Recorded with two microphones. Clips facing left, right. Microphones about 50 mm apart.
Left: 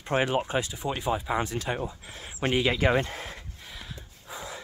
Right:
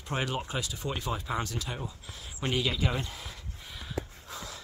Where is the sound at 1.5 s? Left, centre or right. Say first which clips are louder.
Left 6 dB; left.